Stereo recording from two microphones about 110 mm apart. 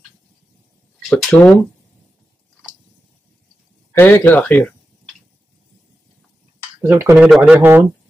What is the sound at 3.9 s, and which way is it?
Speech, 20° left (ahead or behind).